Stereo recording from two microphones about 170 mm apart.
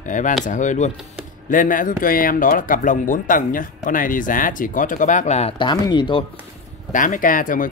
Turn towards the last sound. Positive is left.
turn(degrees=55)  # may be behind; listen again after turning